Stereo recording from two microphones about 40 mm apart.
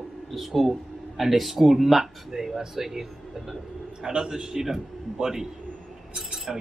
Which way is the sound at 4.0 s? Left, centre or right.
Centre.